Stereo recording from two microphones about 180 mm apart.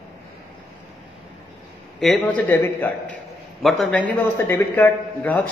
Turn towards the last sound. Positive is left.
turn(degrees=10)  # may be behind; listen again after turning